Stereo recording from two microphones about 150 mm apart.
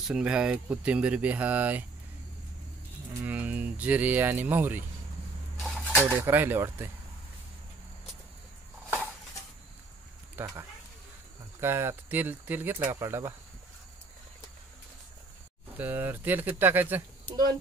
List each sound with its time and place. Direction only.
0.1 s speech: 5° right (ahead or behind)
3.3 s speech: 10° right (ahead or behind)
5.6 s a sound: 10° left (ahead or behind)
6.0 s speech: 15° right (ahead or behind)
10.4 s speech: 15° right (ahead or behind)
11.6 s speech: 15° right (ahead or behind)
15.8 s speech: 15° right (ahead or behind)